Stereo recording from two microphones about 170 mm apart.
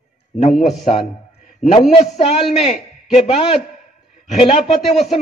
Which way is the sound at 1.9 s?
40° left (ahead or behind).